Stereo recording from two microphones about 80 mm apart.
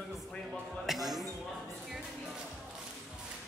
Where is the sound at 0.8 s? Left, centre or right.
Centre.